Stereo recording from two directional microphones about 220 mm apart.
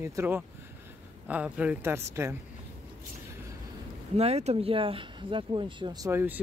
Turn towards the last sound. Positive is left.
turn(degrees=-10)  # may be behind; listen again after turning